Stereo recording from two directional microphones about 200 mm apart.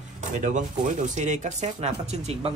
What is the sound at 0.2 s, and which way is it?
Speech, 40° right (ahead or behind).